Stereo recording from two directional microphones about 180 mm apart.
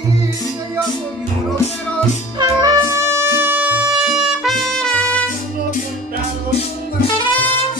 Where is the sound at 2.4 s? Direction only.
20° right (ahead or behind); by 5.3 s 5° left (ahead or behind).